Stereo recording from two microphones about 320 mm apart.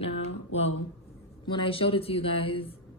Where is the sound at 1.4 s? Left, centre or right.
Centre.